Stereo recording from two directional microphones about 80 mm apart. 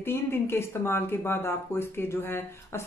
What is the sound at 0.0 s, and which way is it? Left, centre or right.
Speech, left.